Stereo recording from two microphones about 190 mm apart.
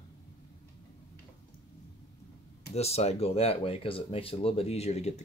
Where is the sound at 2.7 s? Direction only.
35° left (ahead or behind).